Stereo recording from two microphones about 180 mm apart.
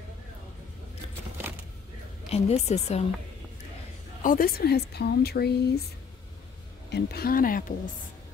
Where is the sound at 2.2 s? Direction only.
35° left (ahead or behind).